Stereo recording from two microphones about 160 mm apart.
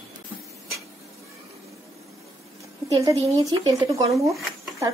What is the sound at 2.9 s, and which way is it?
A woman's voice, 20° right (ahead or behind).